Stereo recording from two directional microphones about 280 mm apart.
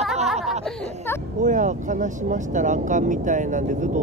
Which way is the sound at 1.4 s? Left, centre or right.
Right.